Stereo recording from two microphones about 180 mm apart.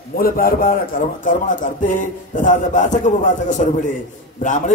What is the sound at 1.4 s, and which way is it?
Speech, 45° left (ahead or behind).